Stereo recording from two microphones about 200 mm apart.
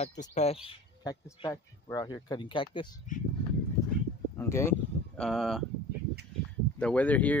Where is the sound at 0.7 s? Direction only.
20° left (ahead or behind).